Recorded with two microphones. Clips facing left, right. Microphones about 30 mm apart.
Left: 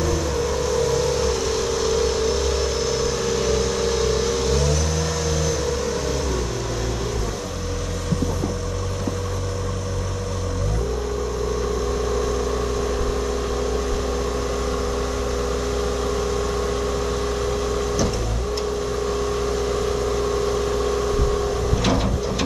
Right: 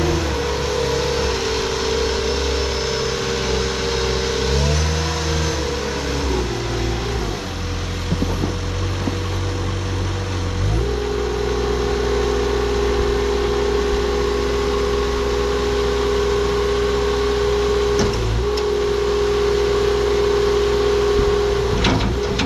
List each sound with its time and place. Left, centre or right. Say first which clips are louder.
0.0 s vehicle: right 2 dB; right
19.4 s vehicle: right 6 dB; right
21.8 s a sound: right 2 dB; right